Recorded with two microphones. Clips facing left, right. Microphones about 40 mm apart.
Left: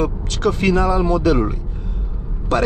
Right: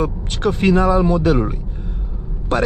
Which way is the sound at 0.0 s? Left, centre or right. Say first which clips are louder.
Left 1 dB; right.